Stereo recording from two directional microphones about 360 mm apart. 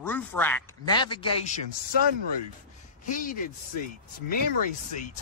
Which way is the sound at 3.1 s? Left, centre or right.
Left.